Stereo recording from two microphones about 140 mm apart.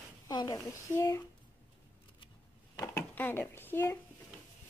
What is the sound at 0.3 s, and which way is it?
Speech, 30° left (ahead or behind).